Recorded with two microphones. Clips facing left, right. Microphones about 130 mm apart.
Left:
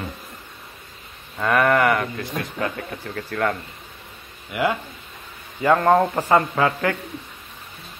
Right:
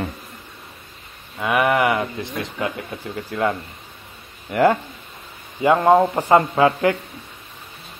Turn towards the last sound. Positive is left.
turn(degrees=-25)  # may be behind; listen again after turning